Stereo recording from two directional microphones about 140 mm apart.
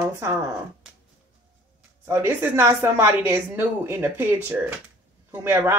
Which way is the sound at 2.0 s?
20° right (ahead or behind).